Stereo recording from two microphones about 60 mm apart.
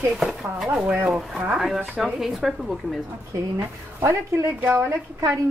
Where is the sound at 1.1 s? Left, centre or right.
Centre.